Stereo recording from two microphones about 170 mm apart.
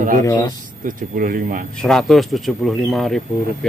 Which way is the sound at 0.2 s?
20° left (ahead or behind).